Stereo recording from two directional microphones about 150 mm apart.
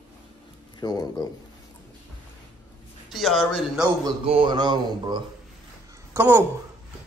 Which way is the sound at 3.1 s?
Centre (ahead or behind).